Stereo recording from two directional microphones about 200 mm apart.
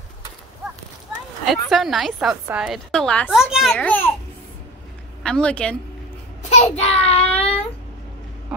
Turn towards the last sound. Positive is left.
turn(degrees=30)  # may be behind; listen again after turning